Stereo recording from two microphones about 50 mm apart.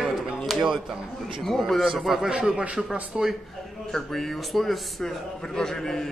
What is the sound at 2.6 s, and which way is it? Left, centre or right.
Speech, right.